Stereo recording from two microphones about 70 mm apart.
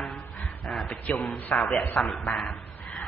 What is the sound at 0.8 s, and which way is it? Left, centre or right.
Speech, left.